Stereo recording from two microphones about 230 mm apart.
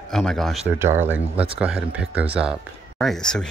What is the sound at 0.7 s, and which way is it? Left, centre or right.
Speech, centre.